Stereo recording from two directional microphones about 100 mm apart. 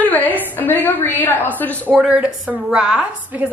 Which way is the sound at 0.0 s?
15° left (ahead or behind).